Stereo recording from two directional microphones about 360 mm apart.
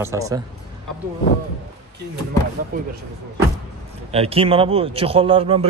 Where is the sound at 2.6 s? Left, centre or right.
Right.